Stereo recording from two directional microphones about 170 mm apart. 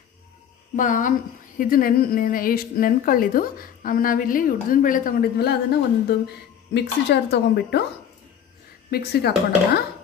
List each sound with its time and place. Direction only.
0.7 s a woman's voice: 50° left (ahead or behind); by 7.8 s 80° left
8.9 s speech: 70° left (ahead or behind)